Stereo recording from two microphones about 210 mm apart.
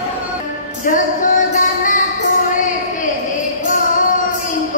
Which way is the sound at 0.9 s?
40° left (ahead or behind).